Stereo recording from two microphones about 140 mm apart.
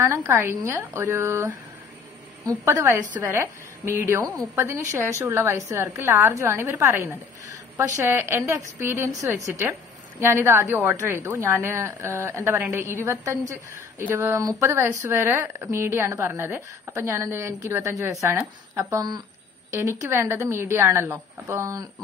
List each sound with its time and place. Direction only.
0.0 s a woman's voice: 20° right (ahead or behind)